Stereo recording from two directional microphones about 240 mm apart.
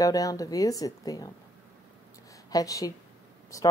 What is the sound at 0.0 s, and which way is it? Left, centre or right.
A woman's voice, centre.